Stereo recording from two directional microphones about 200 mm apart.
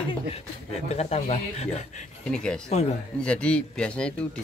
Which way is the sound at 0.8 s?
35° left (ahead or behind).